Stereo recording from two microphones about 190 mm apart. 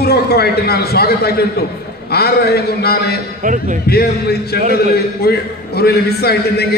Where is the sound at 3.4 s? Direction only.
45° right (ahead or behind).